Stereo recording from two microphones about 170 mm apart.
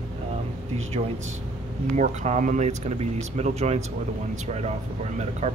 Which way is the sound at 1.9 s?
45° right (ahead or behind).